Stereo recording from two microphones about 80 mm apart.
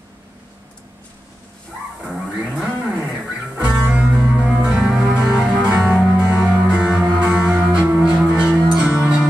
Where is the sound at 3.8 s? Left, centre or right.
Centre.